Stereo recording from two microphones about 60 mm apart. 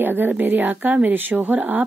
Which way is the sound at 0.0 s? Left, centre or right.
Right.